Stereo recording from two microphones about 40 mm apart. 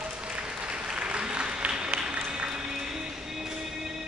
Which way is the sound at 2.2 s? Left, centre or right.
Centre.